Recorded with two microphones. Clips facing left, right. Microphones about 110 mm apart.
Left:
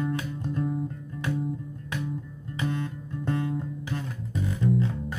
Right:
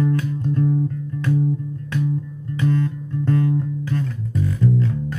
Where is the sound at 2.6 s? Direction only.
15° left (ahead or behind).